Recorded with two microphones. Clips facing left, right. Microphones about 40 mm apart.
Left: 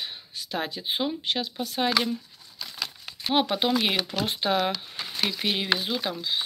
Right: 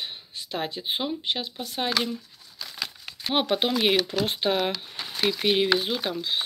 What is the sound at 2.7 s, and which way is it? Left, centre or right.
Crumpling, right.